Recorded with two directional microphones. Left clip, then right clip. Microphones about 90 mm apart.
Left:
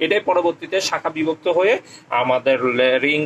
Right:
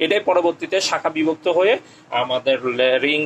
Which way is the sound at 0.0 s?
25° right (ahead or behind).